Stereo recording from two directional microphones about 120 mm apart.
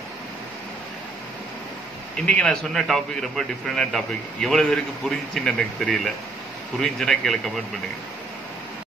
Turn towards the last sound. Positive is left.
turn(degrees=5)  # may be behind; listen again after turning